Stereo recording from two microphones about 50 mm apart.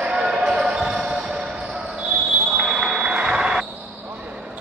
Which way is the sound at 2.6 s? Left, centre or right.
Centre.